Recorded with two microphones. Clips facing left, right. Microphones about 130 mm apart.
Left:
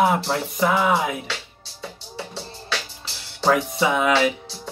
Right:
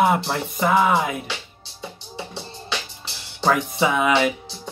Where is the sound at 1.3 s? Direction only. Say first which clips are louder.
Even; 15° right (ahead or behind).